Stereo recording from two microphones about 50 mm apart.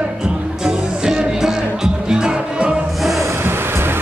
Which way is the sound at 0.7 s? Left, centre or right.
Centre.